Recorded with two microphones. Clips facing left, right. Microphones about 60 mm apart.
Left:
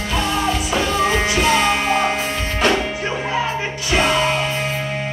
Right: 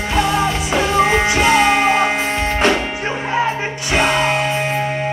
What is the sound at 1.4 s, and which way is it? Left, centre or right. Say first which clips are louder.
Music: right 5 dB; right.